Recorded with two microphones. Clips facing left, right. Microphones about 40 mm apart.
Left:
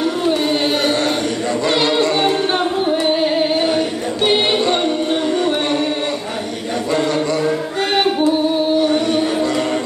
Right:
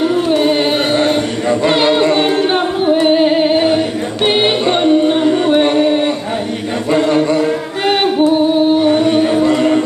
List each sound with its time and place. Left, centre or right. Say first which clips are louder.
0.3 s chant: right 3 dB; centre
4.2 s music: right 2 dB; centre
7.1 s a sound: right 5 dB; right
8.7 s music: right 4 dB; right